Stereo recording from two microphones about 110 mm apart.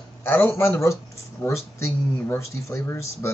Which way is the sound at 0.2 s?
20° left (ahead or behind).